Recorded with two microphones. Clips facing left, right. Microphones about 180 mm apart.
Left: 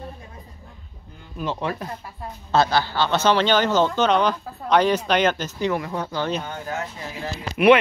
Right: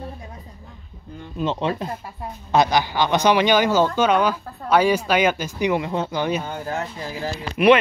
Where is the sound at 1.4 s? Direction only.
20° right (ahead or behind).